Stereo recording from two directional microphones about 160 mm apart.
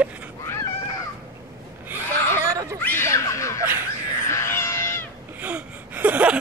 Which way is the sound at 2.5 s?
20° right (ahead or behind).